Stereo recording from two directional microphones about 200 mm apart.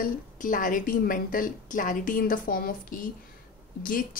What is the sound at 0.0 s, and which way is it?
A woman's voice, 40° left (ahead or behind).